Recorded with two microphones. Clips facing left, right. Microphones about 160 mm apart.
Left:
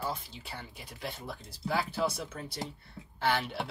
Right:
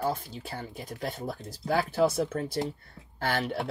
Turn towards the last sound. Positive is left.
turn(degrees=-45)  # may be behind; listen again after turning